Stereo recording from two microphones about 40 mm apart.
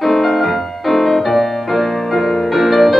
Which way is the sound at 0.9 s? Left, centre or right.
Centre.